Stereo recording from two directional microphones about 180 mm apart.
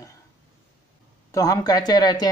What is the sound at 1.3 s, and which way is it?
Speech, 20° left (ahead or behind).